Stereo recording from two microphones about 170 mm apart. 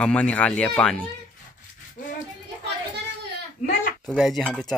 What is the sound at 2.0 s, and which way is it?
Child singing, 50° left (ahead or behind).